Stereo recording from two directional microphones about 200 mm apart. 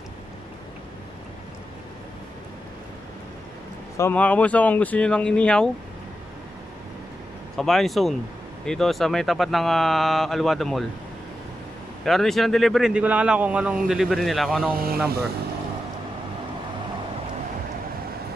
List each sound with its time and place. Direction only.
3.9 s speech: 10° left (ahead or behind)
7.5 s speech: centre (ahead or behind)
12.0 s speech: centre (ahead or behind)
14.7 s speech: 50° right (ahead or behind)